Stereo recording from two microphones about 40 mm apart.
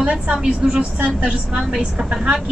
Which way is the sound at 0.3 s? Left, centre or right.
Right.